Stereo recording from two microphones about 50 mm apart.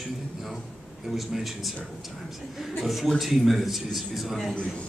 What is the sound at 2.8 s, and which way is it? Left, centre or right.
Speech, centre.